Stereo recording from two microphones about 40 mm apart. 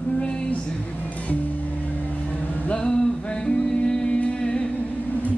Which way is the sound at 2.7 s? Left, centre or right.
Left.